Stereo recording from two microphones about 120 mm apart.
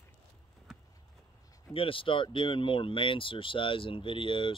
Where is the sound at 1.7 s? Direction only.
50° left (ahead or behind).